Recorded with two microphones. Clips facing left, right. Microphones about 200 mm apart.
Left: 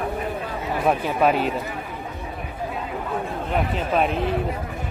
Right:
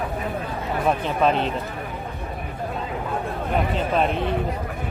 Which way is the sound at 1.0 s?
10° left (ahead or behind).